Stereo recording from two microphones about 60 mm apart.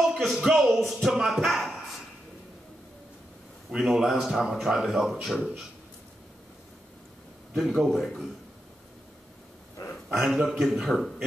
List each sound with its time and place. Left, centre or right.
0.0 s a man's voice: centre
3.7 s a man's voice: centre
7.5 s a man's voice: centre
10.1 s a man's voice: centre